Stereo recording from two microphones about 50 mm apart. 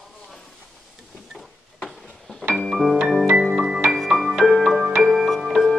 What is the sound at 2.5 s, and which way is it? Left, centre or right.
Music, centre.